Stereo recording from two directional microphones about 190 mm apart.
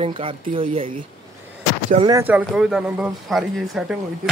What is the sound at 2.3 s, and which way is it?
Speech, 5° right (ahead or behind).